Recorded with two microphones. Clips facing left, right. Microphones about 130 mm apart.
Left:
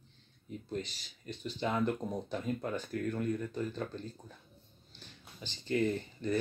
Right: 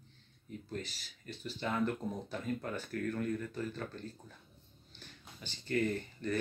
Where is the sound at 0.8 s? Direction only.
5° right (ahead or behind).